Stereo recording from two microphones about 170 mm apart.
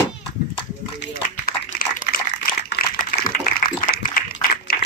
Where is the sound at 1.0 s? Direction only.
85° left.